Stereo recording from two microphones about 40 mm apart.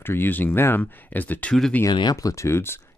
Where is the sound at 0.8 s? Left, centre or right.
Left.